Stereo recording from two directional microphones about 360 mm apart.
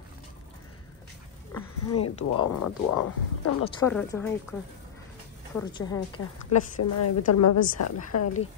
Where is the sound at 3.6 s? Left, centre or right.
Centre.